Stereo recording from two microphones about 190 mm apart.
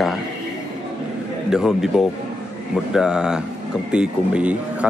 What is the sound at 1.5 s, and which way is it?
Speech, 5° right (ahead or behind).